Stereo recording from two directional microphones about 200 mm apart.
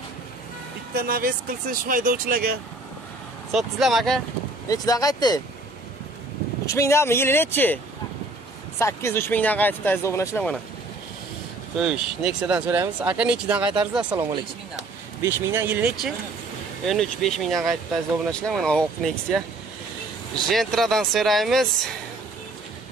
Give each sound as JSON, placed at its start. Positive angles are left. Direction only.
{"t": 0.9, "sound": "speech", "side_deg": -45}
{"t": 3.5, "sound": "speech", "side_deg": 0}
{"t": 4.6, "sound": "speech", "side_deg": 20}
{"t": 6.6, "sound": "speech", "side_deg": 15}
{"t": 11.8, "sound": "speech", "side_deg": -5}